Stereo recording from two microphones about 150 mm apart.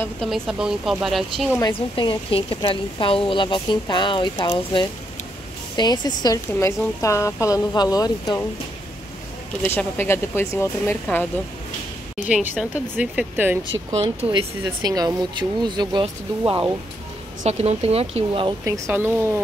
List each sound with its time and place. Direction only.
0.2 s speech: centre (ahead or behind)
2.0 s a woman's voice: 35° left (ahead or behind)
9.7 s speech: 15° left (ahead or behind)
12.3 s speech: 5° right (ahead or behind)
14.0 s speech: 30° right (ahead or behind)
17.4 s speech: 45° right (ahead or behind)
18.7 s speech: 15° right (ahead or behind)